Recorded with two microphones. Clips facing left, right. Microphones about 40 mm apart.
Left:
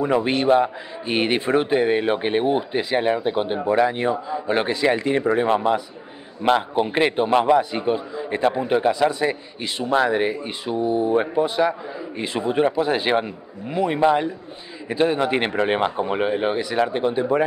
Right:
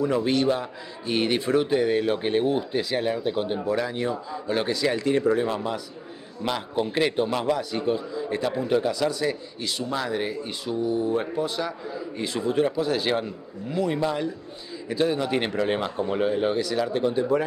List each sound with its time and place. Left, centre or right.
0.0 s a man's voice: left